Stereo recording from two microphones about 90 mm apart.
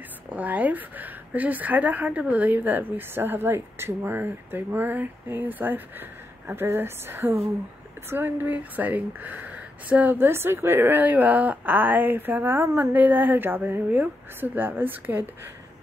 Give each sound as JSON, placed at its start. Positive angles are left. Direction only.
{"t": 0.3, "sound": "a woman's voice", "side_deg": -15}